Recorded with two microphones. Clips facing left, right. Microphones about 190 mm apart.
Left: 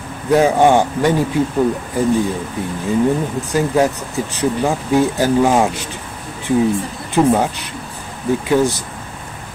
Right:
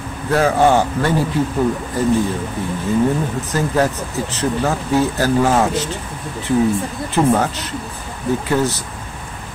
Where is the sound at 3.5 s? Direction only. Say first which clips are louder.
Left 3 dB; 15° left (ahead or behind).